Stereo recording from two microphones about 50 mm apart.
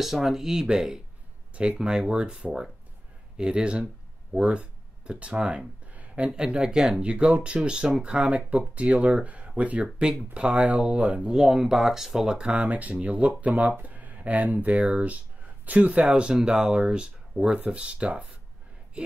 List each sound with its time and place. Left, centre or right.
0.0 s speech: centre
5.9 s a sound: right
6.3 s speech: centre
11.4 s speech: centre